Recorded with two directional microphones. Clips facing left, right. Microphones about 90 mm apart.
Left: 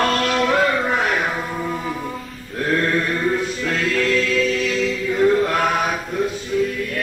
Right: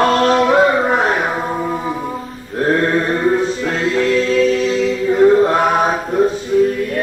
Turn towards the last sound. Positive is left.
turn(degrees=-35)  # may be behind; listen again after turning